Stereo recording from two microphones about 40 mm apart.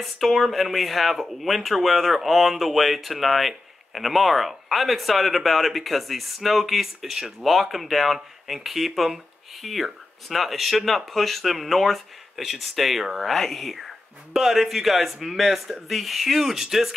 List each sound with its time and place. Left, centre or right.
0.0 s speech: centre
7.4 s speech: centre